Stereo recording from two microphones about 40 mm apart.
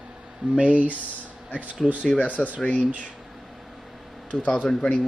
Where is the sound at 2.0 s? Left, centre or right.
Left.